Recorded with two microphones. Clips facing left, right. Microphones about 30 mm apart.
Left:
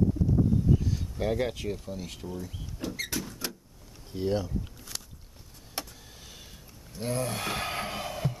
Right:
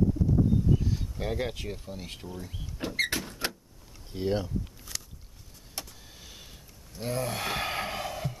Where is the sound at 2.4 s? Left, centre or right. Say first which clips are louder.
Even; right.